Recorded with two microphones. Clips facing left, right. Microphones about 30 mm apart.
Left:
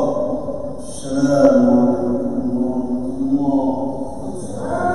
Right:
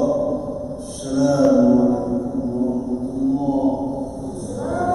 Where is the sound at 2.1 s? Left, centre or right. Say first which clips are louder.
Left 3 dB; centre.